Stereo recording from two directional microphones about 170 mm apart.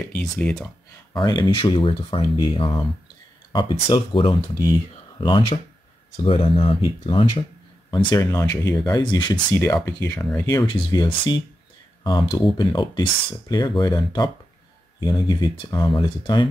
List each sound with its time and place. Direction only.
0.2 s speech: 5° left (ahead or behind)
1.1 s speech: 25° left (ahead or behind)